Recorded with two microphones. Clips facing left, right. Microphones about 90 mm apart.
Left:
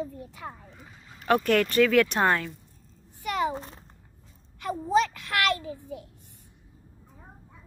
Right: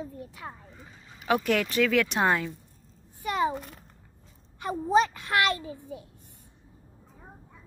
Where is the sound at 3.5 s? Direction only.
30° left (ahead or behind).